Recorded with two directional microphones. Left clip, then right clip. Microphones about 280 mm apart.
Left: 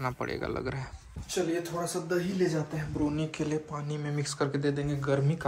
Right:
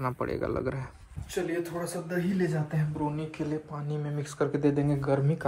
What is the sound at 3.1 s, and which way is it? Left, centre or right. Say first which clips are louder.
Speech: left 2 dB; centre.